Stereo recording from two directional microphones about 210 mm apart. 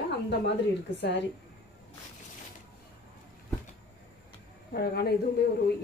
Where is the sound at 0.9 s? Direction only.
55° left (ahead or behind).